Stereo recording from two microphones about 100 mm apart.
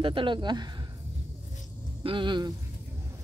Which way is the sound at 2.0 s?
55° right (ahead or behind).